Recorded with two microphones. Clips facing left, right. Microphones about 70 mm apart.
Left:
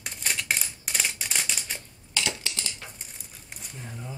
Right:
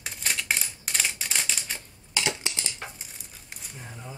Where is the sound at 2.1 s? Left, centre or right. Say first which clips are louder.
Right 2 dB; right.